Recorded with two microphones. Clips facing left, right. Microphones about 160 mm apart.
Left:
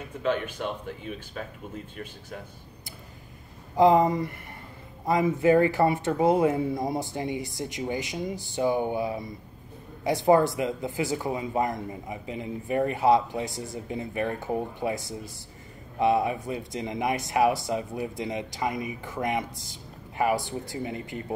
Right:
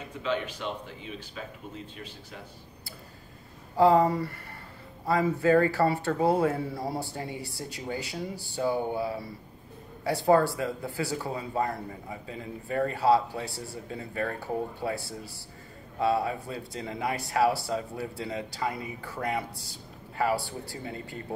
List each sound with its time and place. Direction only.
0.2 s speech: 50° left (ahead or behind)
3.7 s speech: 15° left (ahead or behind)